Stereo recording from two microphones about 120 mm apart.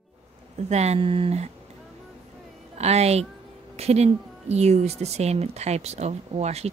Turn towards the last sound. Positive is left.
turn(degrees=-65)  # may be behind; listen again after turning